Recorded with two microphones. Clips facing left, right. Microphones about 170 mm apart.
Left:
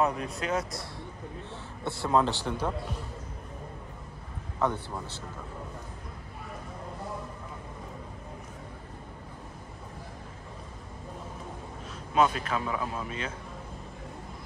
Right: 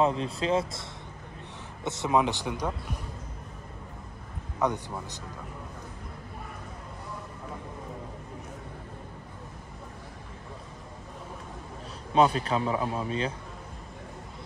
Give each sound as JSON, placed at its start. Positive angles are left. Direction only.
{"t": 0.0, "sound": "speech", "side_deg": -25}
{"t": 1.9, "sound": "speech", "side_deg": -20}
{"t": 4.6, "sound": "speech", "side_deg": -15}
{"t": 12.1, "sound": "speech", "side_deg": -35}